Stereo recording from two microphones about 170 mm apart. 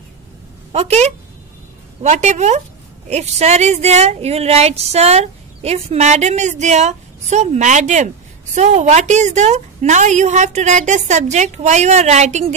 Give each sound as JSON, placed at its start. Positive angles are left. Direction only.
{"t": 0.7, "sound": "a woman's voice", "side_deg": -40}